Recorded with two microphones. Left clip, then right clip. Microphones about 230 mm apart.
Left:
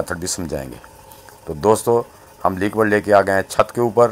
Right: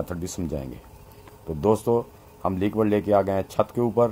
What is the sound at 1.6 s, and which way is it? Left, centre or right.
Speech, centre.